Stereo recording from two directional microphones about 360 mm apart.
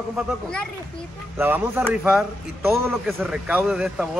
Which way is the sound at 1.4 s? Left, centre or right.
Centre.